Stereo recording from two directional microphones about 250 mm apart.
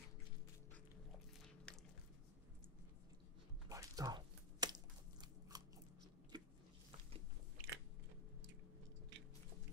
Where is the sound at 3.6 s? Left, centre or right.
Centre.